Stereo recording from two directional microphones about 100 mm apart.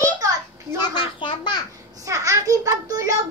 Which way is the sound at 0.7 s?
50° left (ahead or behind).